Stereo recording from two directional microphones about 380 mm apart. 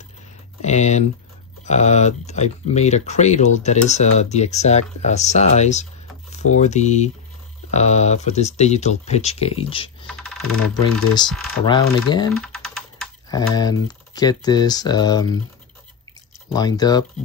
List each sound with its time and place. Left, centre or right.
0.6 s speech: centre
10.2 s typing: centre
10.7 s speech: centre
12.4 s speech: centre
16.5 s speech: centre